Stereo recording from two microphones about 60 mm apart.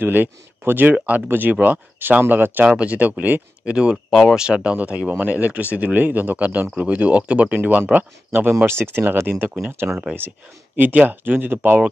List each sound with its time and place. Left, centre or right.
0.0 s speech: right
2.6 s speech: right
3.7 s speech: centre
4.1 s speech: centre
4.4 s speech: centre
8.9 s speech: right
9.8 s speech: centre
10.8 s speech: right